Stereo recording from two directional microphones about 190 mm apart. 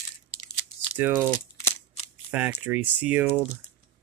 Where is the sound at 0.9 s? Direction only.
10° right (ahead or behind).